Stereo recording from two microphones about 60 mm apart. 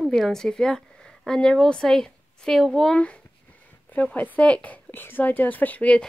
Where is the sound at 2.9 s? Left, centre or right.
Centre.